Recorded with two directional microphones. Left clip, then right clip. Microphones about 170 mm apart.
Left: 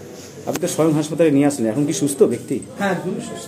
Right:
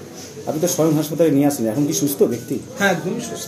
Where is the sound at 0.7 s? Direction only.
Centre (ahead or behind).